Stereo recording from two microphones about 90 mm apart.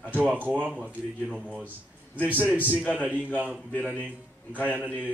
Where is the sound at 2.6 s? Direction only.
20° left (ahead or behind).